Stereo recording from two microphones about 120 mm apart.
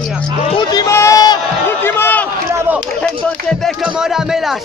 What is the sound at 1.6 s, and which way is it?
Speech, 20° left (ahead or behind).